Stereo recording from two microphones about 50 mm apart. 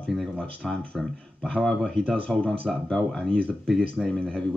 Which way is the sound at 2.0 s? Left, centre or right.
Centre.